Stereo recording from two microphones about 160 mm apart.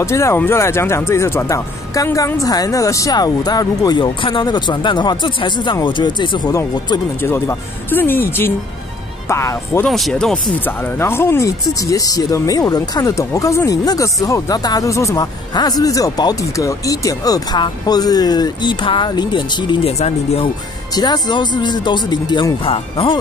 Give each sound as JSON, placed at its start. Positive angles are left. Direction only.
{"t": 0.0, "sound": "speech", "side_deg": 15}
{"t": 7.2, "sound": "speech", "side_deg": 15}
{"t": 9.8, "sound": "speech", "side_deg": 0}
{"t": 20.9, "sound": "speech", "side_deg": 25}